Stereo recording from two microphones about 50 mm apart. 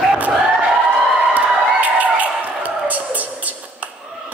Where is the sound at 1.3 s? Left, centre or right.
Right.